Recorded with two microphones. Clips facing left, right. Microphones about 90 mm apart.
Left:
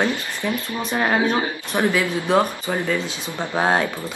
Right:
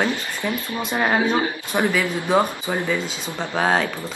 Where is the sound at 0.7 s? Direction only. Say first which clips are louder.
Even; 15° right (ahead or behind).